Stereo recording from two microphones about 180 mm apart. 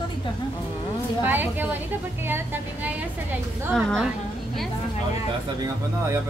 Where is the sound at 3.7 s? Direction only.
Centre (ahead or behind).